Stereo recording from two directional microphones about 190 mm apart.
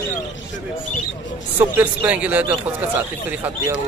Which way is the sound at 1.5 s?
10° right (ahead or behind).